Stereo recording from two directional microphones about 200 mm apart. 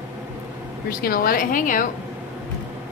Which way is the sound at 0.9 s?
45° left (ahead or behind).